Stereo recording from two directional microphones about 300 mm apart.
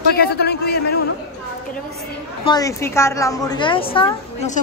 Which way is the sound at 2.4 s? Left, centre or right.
Centre.